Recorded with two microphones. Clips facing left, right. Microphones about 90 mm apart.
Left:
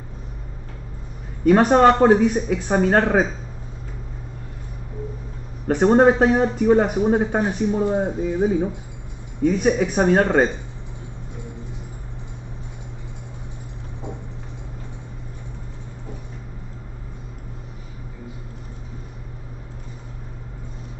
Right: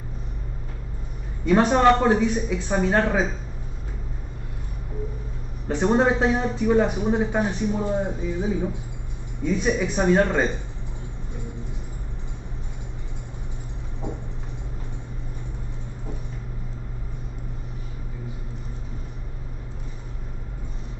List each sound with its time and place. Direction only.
1.4 s a man's voice: 55° left (ahead or behind)
5.7 s a man's voice: 45° left (ahead or behind)